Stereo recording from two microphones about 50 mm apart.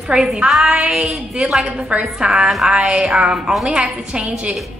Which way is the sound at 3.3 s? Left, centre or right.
Centre.